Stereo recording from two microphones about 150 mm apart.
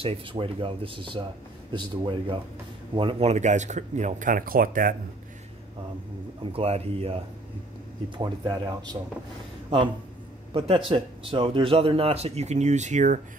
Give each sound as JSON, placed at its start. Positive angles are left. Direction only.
{"t": 0.0, "sound": "speech", "side_deg": -35}
{"t": 6.4, "sound": "speech", "side_deg": -40}
{"t": 8.2, "sound": "speech", "side_deg": -30}
{"t": 10.5, "sound": "speech", "side_deg": -40}